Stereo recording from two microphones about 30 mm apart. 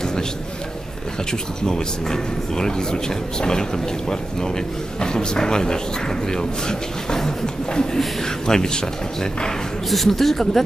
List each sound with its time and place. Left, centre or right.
1.7 s a man's voice: centre
5.0 s a man's voice: left
9.8 s speech: centre